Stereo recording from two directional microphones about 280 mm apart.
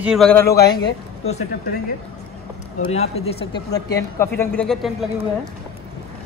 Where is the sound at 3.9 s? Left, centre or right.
Centre.